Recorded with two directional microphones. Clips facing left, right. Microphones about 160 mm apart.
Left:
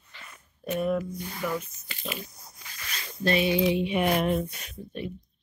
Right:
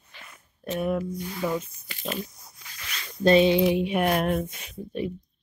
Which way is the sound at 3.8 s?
55° right (ahead or behind).